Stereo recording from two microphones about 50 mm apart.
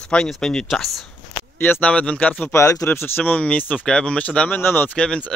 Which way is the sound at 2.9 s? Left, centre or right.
Left.